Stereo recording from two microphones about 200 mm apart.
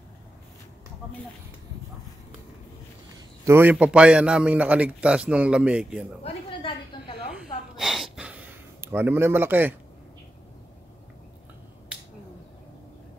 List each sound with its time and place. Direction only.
3.4 s a man's voice: 10° right (ahead or behind)
6.2 s a sound: 25° left (ahead or behind)
7.2 s gasp: centre (ahead or behind)